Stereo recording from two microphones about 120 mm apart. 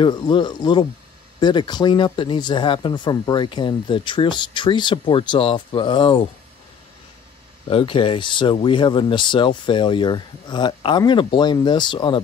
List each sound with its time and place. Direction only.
0.0 s speech: 40° left (ahead or behind)
7.7 s speech: 45° left (ahead or behind)